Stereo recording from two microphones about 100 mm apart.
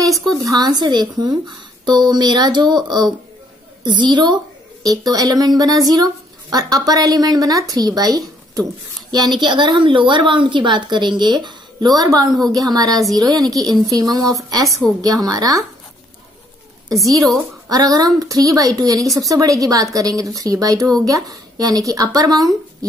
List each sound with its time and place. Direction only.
0.1 s a sound: 5° left (ahead or behind)
0.4 s a woman's voice: 40° right (ahead or behind)
4.8 s a woman's voice: 40° right (ahead or behind)
17.6 s a woman's voice: 40° right (ahead or behind)